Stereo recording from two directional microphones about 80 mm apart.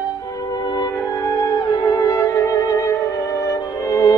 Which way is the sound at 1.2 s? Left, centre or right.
Left.